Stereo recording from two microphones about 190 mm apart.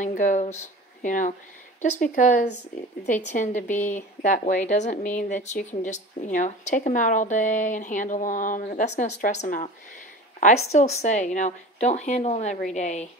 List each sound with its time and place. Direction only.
0.0 s speech: 40° left (ahead or behind)